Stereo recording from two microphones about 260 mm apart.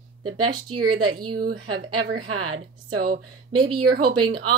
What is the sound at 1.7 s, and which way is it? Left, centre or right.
Speech, right.